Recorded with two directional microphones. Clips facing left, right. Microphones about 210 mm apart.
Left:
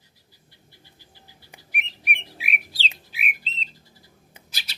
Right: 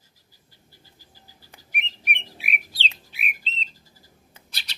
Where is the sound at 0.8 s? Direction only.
40° right (ahead or behind).